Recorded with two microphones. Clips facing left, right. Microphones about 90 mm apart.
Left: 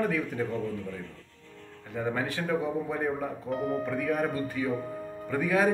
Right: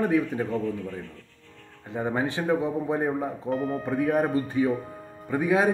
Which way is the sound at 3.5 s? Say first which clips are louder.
Right 2 dB; 35° right (ahead or behind).